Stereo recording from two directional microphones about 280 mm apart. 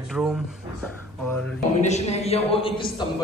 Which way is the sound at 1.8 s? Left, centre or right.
Left.